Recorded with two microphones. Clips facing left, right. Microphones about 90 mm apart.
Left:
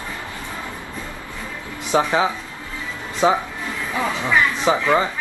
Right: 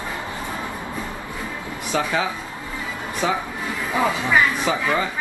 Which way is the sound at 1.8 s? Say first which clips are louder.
Left 5 dB; 25° left (ahead or behind).